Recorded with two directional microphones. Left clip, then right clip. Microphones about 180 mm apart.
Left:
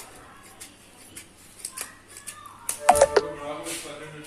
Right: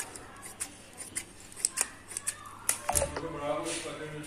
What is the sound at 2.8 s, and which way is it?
Music, 55° left (ahead or behind).